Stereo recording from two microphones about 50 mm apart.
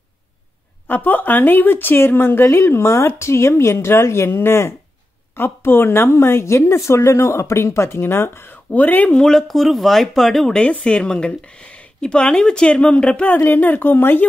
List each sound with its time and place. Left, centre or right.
0.8 s a woman's voice: left
5.4 s a woman's voice: left
8.0 s speech: left
8.7 s speech: left
9.1 s speech: centre
10.7 s a woman's voice: left
13.3 s speech: left